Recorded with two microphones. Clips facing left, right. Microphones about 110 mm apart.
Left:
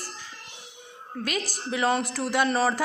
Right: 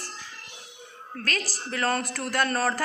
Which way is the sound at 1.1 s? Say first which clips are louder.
Left 2 dB; 10° left (ahead or behind).